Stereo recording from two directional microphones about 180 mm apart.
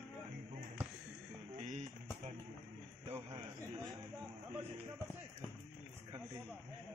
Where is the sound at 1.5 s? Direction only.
40° right (ahead or behind).